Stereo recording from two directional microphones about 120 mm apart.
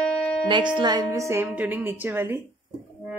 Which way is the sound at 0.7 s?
35° right (ahead or behind).